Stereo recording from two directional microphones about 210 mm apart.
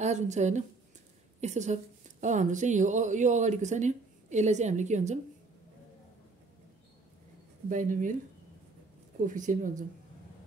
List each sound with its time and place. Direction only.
0.0 s a woman's voice: 35° right (ahead or behind)
7.7 s a woman's voice: 40° right (ahead or behind)
9.2 s a woman's voice: 40° right (ahead or behind)